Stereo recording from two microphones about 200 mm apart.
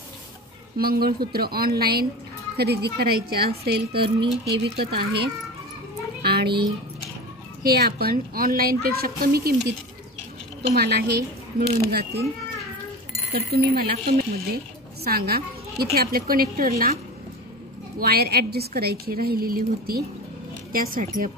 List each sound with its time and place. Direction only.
0.7 s a woman's voice: 50° right (ahead or behind)
6.2 s a sound: 55° right (ahead or behind)
7.6 s a woman's voice: 50° right (ahead or behind)
13.3 s a woman's voice: 50° right (ahead or behind)
17.9 s a woman's voice: 50° right (ahead or behind)